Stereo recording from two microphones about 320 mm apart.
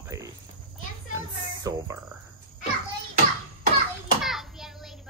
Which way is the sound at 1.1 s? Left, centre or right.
Centre.